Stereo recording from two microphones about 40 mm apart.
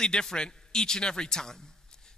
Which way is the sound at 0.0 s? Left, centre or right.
Centre.